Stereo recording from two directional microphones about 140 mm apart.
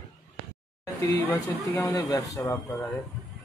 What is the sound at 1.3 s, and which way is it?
Speech, 25° left (ahead or behind).